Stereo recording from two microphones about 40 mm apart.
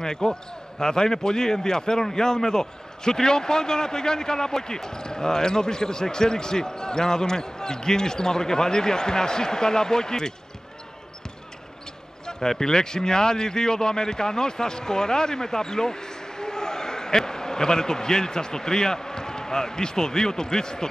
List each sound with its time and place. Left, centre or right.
0.0 s speech: centre
12.3 s a man's voice: centre